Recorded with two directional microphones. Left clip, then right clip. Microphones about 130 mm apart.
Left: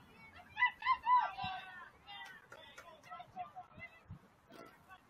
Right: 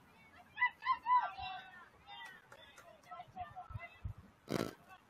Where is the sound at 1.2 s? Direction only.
Centre (ahead or behind).